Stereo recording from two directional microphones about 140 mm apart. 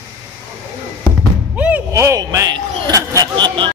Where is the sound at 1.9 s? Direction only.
20° right (ahead or behind).